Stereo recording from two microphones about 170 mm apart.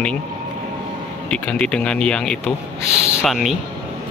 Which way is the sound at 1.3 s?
5° left (ahead or behind).